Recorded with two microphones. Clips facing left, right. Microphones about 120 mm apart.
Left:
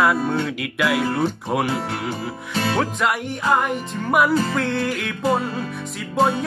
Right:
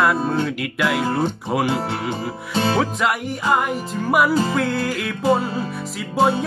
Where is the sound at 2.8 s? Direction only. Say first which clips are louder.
Right 1 dB; centre (ahead or behind).